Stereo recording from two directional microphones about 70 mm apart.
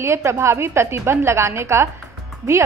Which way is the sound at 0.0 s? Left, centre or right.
Right.